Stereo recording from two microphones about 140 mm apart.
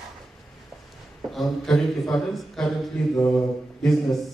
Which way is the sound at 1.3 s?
Centre (ahead or behind).